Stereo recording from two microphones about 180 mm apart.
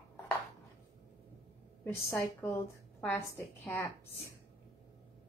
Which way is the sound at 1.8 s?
15° left (ahead or behind).